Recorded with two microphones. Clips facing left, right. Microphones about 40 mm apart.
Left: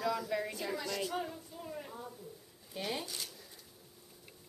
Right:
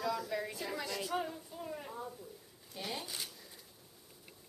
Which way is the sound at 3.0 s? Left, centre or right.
Centre.